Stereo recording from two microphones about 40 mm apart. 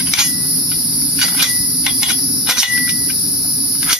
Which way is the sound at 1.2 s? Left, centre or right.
Centre.